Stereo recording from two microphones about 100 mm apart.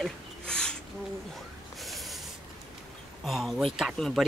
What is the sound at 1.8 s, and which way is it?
Snort, centre (ahead or behind).